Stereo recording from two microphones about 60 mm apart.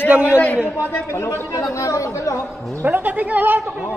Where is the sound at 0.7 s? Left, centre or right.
Left.